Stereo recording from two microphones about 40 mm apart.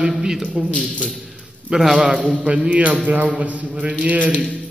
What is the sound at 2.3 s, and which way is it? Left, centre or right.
A man's voice, right.